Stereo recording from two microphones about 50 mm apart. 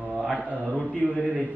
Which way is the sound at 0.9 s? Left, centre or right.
Right.